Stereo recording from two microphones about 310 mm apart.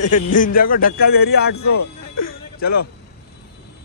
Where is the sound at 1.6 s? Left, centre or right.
Left.